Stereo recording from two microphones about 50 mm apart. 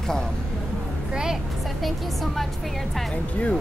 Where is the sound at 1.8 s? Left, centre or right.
Centre.